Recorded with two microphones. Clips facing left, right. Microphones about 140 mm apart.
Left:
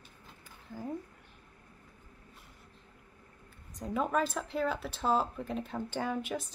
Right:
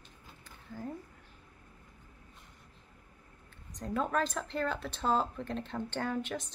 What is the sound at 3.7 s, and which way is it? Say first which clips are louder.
A woman's voice: left 1 dB; 5° left (ahead or behind).